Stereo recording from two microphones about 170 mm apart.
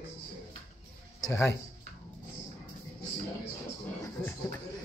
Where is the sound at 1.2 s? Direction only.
15° left (ahead or behind).